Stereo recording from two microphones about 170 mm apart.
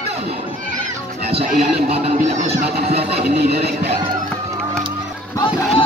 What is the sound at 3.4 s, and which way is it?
Music, 70° right (ahead or behind).